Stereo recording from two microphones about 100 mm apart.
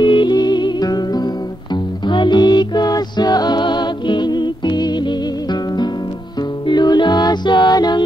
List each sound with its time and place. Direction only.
0.0 s music: 50° left (ahead or behind)